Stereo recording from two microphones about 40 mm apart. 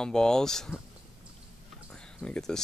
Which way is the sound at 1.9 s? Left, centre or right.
Left.